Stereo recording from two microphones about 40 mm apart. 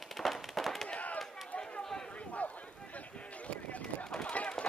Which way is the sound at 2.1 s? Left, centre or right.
Left.